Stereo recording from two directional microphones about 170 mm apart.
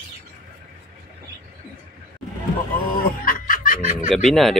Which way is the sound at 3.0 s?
55° left (ahead or behind).